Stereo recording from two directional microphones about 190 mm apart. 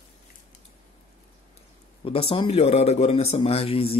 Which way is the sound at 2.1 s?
30° left (ahead or behind).